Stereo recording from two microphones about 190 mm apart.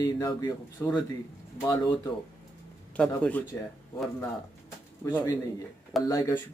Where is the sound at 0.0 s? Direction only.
20° left (ahead or behind).